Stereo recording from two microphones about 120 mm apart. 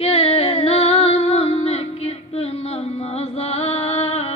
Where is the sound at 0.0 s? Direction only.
55° left (ahead or behind).